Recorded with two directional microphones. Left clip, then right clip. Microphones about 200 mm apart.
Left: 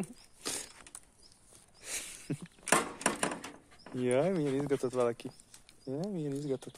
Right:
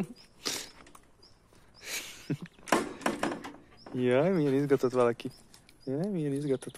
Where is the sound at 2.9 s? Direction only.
55° left (ahead or behind).